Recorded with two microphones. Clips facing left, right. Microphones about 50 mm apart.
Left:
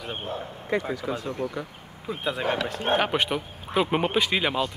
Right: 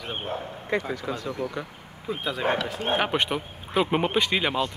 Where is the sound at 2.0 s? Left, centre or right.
Centre.